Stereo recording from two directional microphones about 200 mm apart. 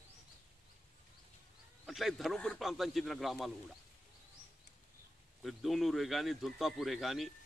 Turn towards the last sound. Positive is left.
turn(degrees=0)  # may be behind; listen again after turning